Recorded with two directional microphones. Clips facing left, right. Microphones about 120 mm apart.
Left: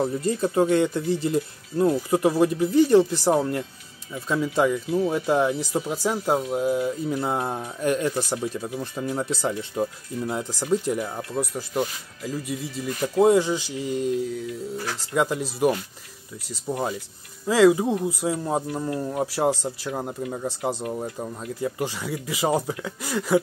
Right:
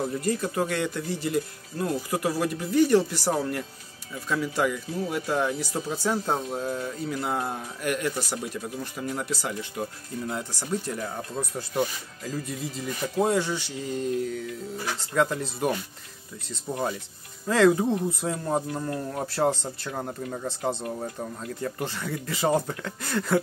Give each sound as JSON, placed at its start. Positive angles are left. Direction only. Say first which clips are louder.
{"t": 0.2, "sound": "speech", "louder": "left 5 dB", "side_deg": 25}
{"t": 7.1, "sound": "speech", "louder": "left 3 dB", "side_deg": 25}
{"t": 12.4, "sound": "speech", "louder": "left 3 dB", "side_deg": 5}
{"t": 13.3, "sound": "speech", "louder": "left 6 dB", "side_deg": 15}